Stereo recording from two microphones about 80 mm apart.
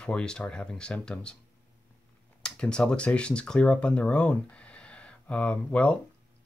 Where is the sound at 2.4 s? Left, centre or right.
Centre.